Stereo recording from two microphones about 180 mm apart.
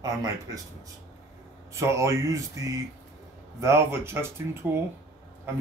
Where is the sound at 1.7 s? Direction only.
15° right (ahead or behind).